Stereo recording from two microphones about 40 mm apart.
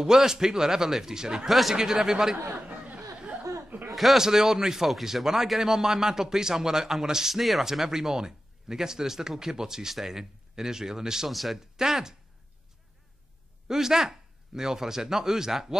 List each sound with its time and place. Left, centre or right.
0.0 s a man's voice: centre
1.5 s speech: centre
1.8 s a man's voice: centre
2.7 s a sound: right
3.9 s a sound: centre
4.2 s a man's voice: centre
11.2 s speech: centre
11.7 s a man's voice: centre
13.7 s a man's voice: centre